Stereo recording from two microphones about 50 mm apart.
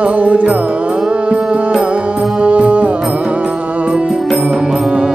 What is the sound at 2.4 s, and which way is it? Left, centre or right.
Music, right.